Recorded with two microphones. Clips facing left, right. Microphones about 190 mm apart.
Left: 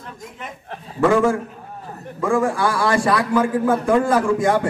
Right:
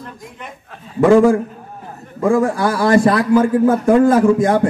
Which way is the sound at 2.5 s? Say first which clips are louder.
Right 5 dB; 40° right (ahead or behind).